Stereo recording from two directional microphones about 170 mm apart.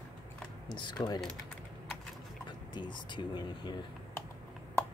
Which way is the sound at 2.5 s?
25° left (ahead or behind).